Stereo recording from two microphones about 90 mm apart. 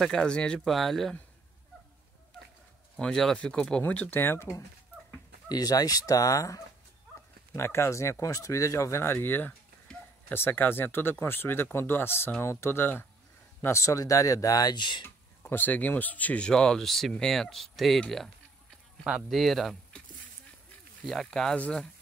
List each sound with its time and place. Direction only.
0.0 s speech: 10° left (ahead or behind)
3.0 s speech: 5° left (ahead or behind); by 4.5 s 25° left (ahead or behind)
5.5 s speech: 45° left (ahead or behind); by 9.5 s 20° left (ahead or behind)
9.9 s a sound: 10° left (ahead or behind)
10.3 s speech: 25° left (ahead or behind); by 15.0 s 60° left (ahead or behind)
15.0 s speech: 20° left (ahead or behind); by 20.0 s centre (ahead or behind)
21.0 s speech: 5° left (ahead or behind)